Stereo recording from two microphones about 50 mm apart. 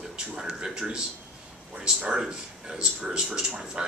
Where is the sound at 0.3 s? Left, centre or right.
Centre.